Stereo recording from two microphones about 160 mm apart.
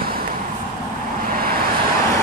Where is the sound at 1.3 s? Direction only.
65° right (ahead or behind).